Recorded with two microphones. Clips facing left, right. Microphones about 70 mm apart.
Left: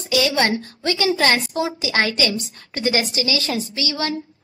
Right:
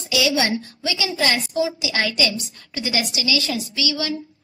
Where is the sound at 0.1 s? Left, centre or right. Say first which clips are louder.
Left 2 dB; left.